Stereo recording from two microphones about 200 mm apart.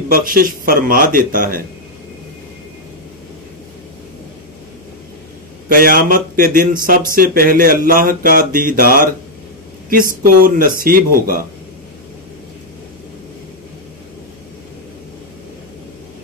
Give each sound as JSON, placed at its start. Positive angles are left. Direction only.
{"t": 0.1, "sound": "speech", "side_deg": -45}
{"t": 5.7, "sound": "speech", "side_deg": -45}